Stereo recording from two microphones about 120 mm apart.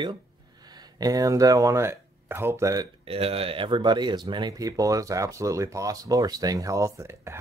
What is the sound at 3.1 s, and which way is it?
Speech, 55° right (ahead or behind).